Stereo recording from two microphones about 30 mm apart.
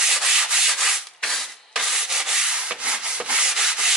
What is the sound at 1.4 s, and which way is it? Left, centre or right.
Sanding, centre.